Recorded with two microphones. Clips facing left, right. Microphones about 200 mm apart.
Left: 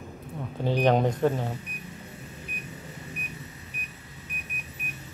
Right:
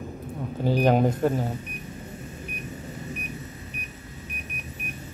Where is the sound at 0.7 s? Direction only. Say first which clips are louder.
Right 2 dB; 5° right (ahead or behind).